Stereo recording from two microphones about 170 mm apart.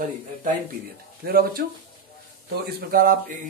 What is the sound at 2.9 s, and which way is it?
Speech, 55° right (ahead or behind).